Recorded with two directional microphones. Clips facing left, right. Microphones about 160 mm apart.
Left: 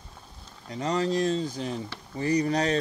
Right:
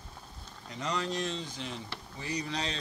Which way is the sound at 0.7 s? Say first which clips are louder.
Left 8 dB; 35° left (ahead or behind).